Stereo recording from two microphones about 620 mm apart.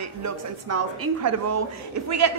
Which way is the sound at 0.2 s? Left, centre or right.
Right.